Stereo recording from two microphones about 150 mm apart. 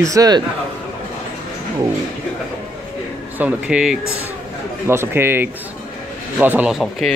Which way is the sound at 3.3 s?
10° right (ahead or behind).